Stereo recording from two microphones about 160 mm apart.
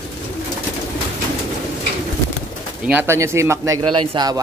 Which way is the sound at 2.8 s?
15° right (ahead or behind).